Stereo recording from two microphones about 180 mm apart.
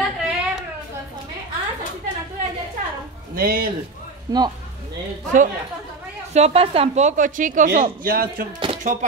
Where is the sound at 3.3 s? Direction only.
55° right (ahead or behind).